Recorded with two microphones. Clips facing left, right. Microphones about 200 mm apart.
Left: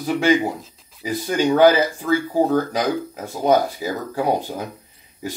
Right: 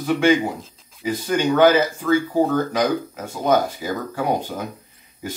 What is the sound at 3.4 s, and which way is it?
Speech, 35° left (ahead or behind).